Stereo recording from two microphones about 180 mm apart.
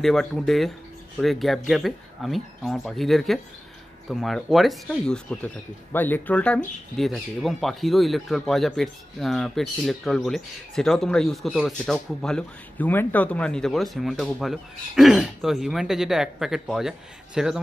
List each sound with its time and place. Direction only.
0.0 s speech: centre (ahead or behind)